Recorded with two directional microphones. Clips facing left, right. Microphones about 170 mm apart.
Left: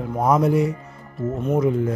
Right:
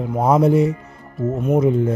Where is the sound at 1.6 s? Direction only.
25° right (ahead or behind).